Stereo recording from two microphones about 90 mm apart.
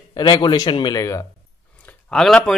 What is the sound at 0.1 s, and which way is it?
Speech, 55° left (ahead or behind).